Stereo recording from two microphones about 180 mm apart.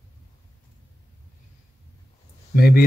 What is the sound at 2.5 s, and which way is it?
Speech, 55° left (ahead or behind).